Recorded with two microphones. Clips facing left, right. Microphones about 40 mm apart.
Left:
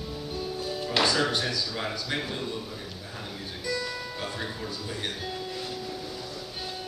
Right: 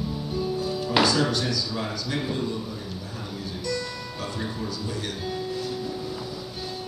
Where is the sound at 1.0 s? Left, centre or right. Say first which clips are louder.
Right 1 dB; left.